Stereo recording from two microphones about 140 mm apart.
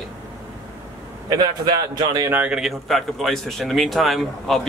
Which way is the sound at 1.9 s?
30° right (ahead or behind).